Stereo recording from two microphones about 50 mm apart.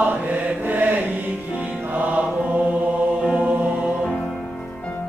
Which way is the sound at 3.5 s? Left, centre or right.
Right.